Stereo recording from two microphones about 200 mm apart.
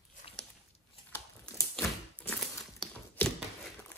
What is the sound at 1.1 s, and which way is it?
Scissors, 15° left (ahead or behind).